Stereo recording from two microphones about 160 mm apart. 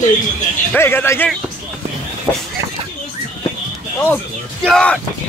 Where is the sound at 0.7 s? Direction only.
10° left (ahead or behind).